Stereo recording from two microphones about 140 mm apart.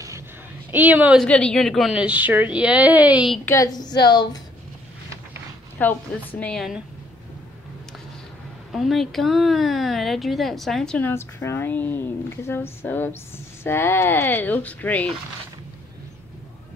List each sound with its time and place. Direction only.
0.7 s a woman's voice: 10° right (ahead or behind)
1.2 s a woman's voice: 5° left (ahead or behind); by 3.3 s 10° right (ahead or behind)
3.4 s a woman's voice: 25° left (ahead or behind)
5.8 s speech: 10° left (ahead or behind)
8.7 s speech: centre (ahead or behind)